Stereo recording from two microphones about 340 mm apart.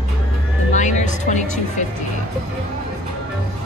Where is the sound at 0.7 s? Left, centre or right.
Left.